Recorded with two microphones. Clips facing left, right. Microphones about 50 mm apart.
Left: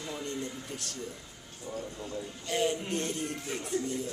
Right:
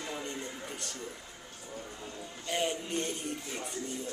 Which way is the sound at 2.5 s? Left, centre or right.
Centre.